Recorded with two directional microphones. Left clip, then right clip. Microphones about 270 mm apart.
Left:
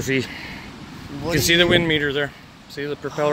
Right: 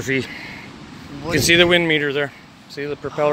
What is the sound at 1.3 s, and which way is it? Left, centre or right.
Speech, centre.